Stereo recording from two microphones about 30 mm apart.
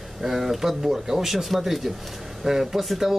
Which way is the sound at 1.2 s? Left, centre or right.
Centre.